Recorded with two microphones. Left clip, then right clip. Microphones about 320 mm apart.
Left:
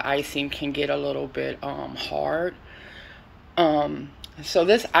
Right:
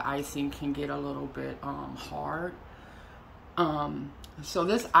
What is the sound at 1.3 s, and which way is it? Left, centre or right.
Speech, centre.